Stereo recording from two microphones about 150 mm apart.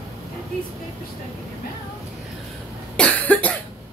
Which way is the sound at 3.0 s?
10° left (ahead or behind).